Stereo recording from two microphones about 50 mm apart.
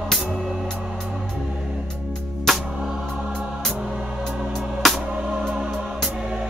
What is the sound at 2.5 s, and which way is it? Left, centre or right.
Music, centre.